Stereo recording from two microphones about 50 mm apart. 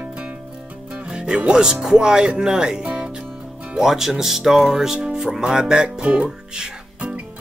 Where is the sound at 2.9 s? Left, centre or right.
Centre.